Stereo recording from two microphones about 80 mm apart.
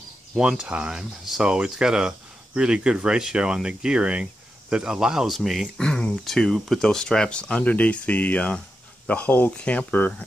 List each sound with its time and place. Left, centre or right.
0.4 s speech: centre
5.8 s speech: centre